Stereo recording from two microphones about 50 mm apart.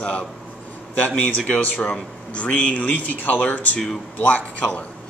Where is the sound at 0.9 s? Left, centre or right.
Left.